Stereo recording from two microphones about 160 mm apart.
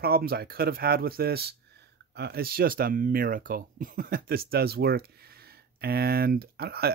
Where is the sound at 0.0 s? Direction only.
70° right (ahead or behind).